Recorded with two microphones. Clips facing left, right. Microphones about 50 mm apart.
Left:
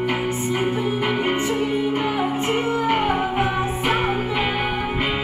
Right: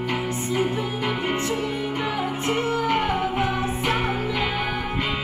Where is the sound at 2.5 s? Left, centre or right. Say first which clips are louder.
Even; centre.